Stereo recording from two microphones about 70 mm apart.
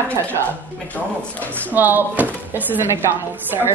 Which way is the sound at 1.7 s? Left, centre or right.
Right.